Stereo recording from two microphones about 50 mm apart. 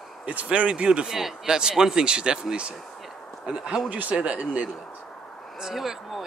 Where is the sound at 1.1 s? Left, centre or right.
Centre.